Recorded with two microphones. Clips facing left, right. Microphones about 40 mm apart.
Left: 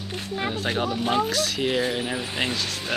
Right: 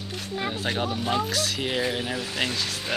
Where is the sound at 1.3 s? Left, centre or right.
Centre.